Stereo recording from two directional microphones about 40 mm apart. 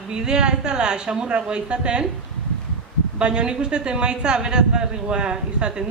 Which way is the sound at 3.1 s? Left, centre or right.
Right.